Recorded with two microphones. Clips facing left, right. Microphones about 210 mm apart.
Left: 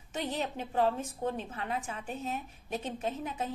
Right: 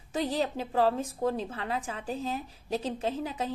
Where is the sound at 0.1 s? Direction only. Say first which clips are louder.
Right 5 dB; 35° right (ahead or behind).